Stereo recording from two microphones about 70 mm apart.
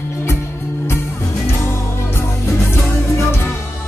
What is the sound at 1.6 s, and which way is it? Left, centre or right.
Music, left.